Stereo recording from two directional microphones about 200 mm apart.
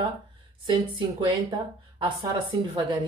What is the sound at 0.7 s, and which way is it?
A woman's voice, 25° right (ahead or behind).